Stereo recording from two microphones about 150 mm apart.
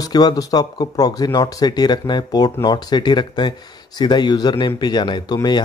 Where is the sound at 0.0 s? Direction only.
25° left (ahead or behind).